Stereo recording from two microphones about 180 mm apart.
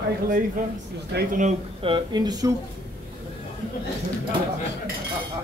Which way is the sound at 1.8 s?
30° right (ahead or behind).